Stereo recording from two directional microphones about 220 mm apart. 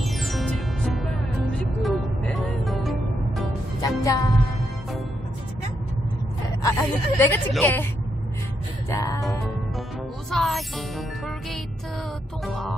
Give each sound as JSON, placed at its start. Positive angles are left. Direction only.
{"t": 0.0, "sound": "music", "side_deg": 0}
{"t": 3.8, "sound": "music", "side_deg": 15}
{"t": 6.6, "sound": "a woman's voice", "side_deg": 15}
{"t": 8.9, "sound": "music", "side_deg": 15}
{"t": 10.3, "sound": "music", "side_deg": 0}